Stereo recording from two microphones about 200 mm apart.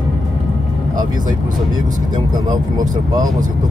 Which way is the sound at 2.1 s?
20° right (ahead or behind).